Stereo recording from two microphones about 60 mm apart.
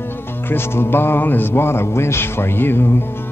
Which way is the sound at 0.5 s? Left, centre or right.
Left.